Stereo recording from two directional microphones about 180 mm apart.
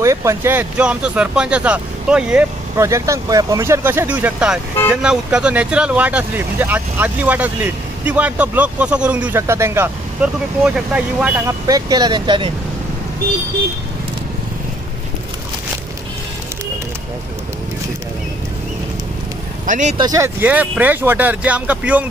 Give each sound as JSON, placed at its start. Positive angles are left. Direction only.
{"t": 0.0, "sound": "speech", "side_deg": -15}
{"t": 19.6, "sound": "speech", "side_deg": -45}
{"t": 20.0, "sound": "speech", "side_deg": -20}